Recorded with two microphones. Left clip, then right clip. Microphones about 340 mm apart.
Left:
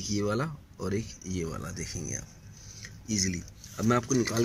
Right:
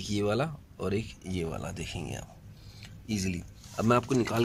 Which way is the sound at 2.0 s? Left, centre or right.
Right.